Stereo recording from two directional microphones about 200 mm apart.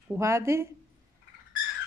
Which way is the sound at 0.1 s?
15° right (ahead or behind).